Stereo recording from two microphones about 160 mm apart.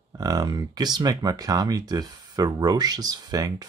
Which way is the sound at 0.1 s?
25° right (ahead or behind).